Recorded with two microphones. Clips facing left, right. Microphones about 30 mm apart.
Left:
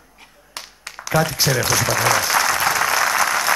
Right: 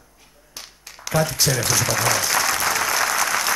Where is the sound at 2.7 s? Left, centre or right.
Centre.